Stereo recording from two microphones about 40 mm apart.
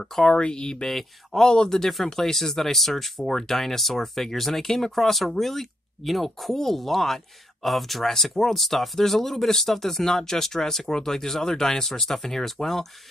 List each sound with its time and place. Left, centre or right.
0.2 s speech: centre
0.8 s speech: centre